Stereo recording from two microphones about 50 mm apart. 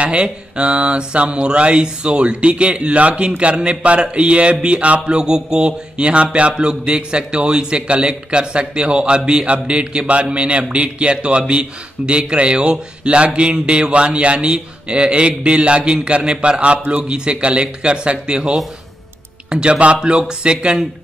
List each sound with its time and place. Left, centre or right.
0.0 s speech: right